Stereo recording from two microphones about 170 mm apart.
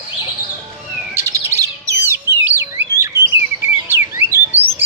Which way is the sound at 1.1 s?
15° right (ahead or behind).